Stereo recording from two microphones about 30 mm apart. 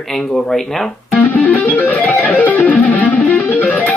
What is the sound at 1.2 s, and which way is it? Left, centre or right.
Music, left.